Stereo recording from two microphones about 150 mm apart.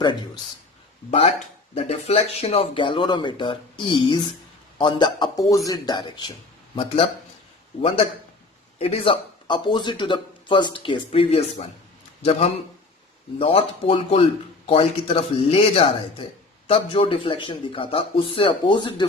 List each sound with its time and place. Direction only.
1.8 s speech: 45° left (ahead or behind)
8.7 s a man's voice: 40° left (ahead or behind)